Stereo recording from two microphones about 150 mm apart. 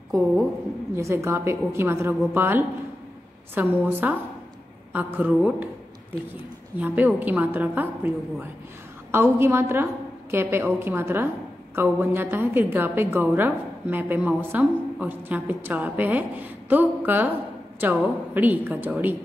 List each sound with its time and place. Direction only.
0.9 s a woman's voice: 20° right (ahead or behind)
6.8 s a woman's voice: 10° right (ahead or behind)